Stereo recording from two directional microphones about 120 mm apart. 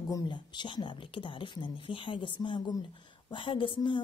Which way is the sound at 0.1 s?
40° left (ahead or behind).